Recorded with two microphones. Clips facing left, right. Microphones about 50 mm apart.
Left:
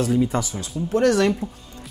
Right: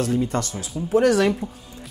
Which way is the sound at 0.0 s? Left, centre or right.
Centre.